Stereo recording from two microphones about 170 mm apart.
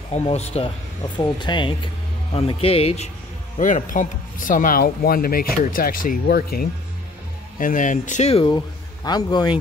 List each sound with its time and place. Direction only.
0.1 s speech: 40° left (ahead or behind)
1.1 s speech: 25° left (ahead or behind)
3.5 s speech: 45° left (ahead or behind)
7.5 s speech: 50° left (ahead or behind); by 9.6 s 25° left (ahead or behind)